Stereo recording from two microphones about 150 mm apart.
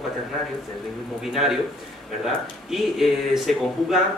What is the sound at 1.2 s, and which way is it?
Speech, centre (ahead or behind).